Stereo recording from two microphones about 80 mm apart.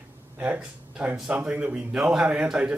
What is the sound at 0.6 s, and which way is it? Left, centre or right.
Speech, centre.